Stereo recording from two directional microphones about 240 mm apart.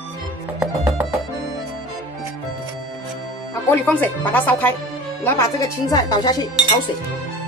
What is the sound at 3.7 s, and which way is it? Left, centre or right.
Speech, centre.